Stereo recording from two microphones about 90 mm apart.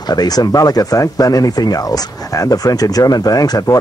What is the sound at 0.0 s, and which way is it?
Speech, 50° left (ahead or behind).